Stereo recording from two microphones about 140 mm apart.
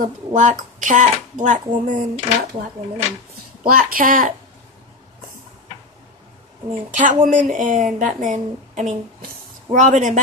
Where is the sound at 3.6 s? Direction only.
90° right; by 4.3 s 70° right (ahead or behind).